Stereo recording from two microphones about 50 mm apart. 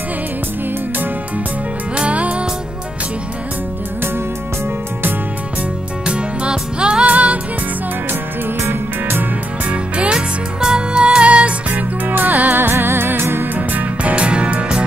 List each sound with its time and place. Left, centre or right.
2.0 s music: right
6.0 s music: centre
9.7 s music: right
12.1 s music: right
13.6 s music: right